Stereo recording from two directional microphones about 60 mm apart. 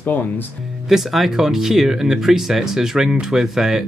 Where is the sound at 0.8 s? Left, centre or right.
Centre.